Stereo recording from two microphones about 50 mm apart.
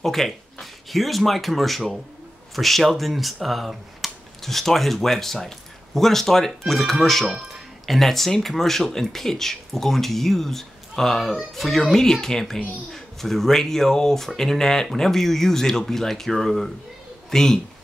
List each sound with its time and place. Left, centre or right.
0.0 s speech: centre